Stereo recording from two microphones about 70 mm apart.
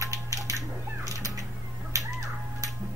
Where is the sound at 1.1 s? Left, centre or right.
Right.